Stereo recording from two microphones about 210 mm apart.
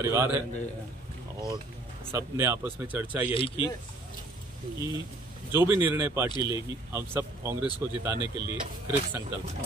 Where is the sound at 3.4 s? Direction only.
25° left (ahead or behind).